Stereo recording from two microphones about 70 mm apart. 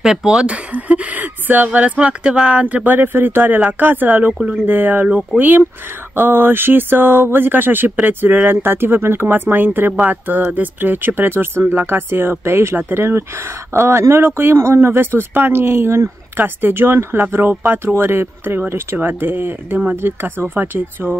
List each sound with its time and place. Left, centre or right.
0.0 s speech: centre
2.6 s speech: right